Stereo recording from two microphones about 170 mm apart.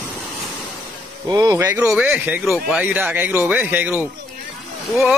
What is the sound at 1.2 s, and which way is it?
Speech, 25° right (ahead or behind).